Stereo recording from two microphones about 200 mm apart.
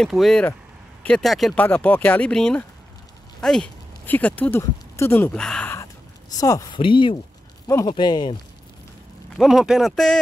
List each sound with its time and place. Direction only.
0.0 s speech: centre (ahead or behind); by 8.4 s 20° left (ahead or behind)
9.3 s speech: centre (ahead or behind)